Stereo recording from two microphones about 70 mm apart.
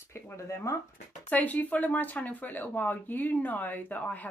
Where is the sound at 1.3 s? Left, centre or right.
Left.